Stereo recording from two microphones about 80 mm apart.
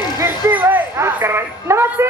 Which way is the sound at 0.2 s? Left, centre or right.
Right.